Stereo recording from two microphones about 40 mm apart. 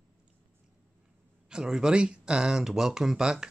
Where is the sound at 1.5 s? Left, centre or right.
Centre.